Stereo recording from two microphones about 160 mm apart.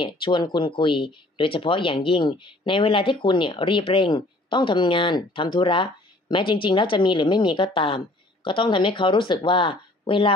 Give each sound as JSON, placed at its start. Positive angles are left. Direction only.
{"t": 0.0, "sound": "speech", "side_deg": 30}